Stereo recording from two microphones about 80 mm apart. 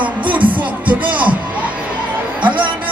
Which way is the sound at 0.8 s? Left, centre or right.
Centre.